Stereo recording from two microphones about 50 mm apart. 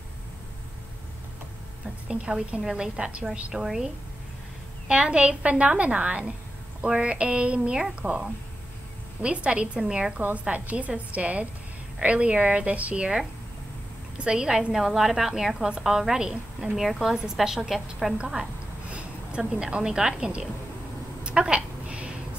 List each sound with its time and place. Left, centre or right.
2.0 s a woman's voice: right
3.6 s a woman's voice: centre
4.8 s a woman's voice: right
9.8 s a woman's voice: centre
10.5 s a woman's voice: right
14.1 s a woman's voice: centre
16.7 s a woman's voice: centre
18.1 s a woman's voice: centre
21.2 s a sound: right